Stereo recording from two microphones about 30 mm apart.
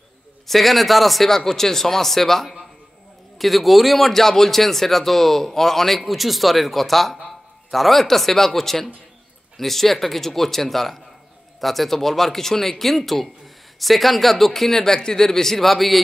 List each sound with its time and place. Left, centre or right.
0.5 s a man's voice: centre
1.3 s a man's voice: centre